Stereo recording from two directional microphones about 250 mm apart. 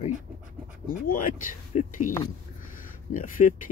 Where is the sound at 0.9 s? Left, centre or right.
Left.